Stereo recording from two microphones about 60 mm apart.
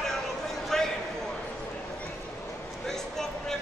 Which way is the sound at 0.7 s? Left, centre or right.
Centre.